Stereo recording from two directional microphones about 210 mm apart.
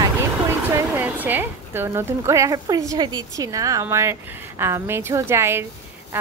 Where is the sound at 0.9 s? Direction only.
10° right (ahead or behind).